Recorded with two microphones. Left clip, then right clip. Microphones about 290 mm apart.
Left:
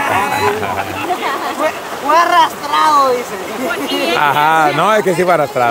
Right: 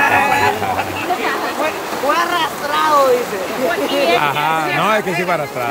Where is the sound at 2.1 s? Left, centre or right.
Centre.